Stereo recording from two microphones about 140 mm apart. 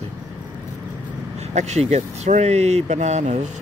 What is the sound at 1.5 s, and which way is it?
Speech, 55° right (ahead or behind).